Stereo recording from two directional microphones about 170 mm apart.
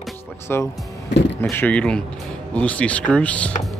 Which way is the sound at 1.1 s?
90° left.